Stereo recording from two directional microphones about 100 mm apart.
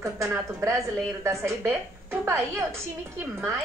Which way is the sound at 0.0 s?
30° right (ahead or behind).